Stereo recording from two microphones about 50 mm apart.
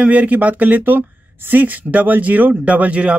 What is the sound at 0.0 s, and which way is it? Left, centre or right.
Speech, right.